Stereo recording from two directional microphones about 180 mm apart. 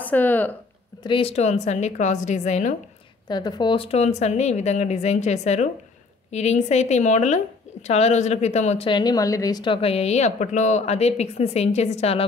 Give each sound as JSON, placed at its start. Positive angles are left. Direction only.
{"t": 0.0, "sound": "speech", "side_deg": 10}
{"t": 1.0, "sound": "speech", "side_deg": 30}
{"t": 3.3, "sound": "speech", "side_deg": 25}